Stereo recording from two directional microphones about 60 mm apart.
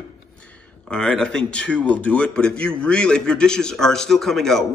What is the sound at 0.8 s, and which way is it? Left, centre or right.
Speech, centre.